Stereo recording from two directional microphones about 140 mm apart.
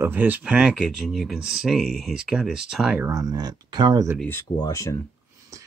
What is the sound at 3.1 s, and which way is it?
Speech, 25° right (ahead or behind).